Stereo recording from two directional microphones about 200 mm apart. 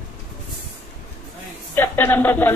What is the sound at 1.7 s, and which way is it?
Speech, 10° left (ahead or behind).